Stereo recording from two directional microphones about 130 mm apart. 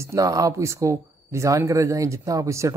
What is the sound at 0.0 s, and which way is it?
Speech, 25° right (ahead or behind).